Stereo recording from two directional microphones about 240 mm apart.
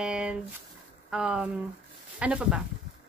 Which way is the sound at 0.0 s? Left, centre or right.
Centre.